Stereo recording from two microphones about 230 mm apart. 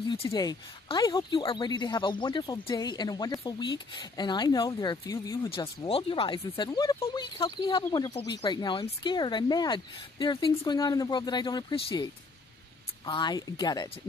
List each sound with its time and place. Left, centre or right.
0.1 s speech: centre